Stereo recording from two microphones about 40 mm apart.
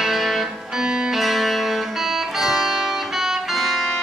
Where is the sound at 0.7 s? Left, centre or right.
Centre.